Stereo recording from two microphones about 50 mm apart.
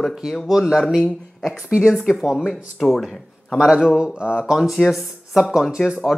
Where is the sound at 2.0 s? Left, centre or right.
Centre.